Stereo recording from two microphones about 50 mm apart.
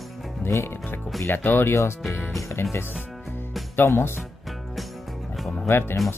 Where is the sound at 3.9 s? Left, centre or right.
Left.